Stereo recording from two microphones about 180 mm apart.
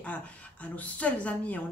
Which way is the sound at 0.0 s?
5° left (ahead or behind).